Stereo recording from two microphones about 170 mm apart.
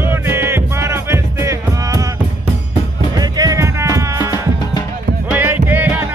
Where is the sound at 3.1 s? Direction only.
20° right (ahead or behind).